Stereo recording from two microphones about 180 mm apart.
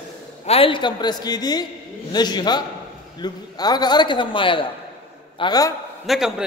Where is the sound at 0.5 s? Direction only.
30° left (ahead or behind).